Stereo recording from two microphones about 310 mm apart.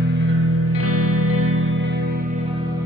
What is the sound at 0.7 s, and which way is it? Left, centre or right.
Music, right.